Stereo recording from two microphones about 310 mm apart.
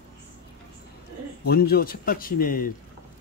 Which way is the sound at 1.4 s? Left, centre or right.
Left.